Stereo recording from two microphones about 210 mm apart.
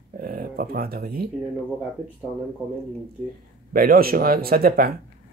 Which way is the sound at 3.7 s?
45° right (ahead or behind).